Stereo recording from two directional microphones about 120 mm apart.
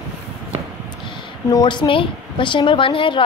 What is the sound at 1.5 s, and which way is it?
A woman's voice, 40° left (ahead or behind).